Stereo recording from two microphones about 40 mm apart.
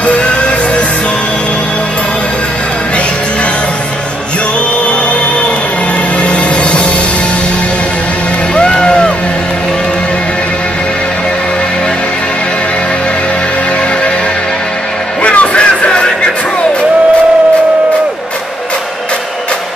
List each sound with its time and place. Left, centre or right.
0.0 s music: left
6.2 s music: left
8.5 s music: left
15.2 s music: left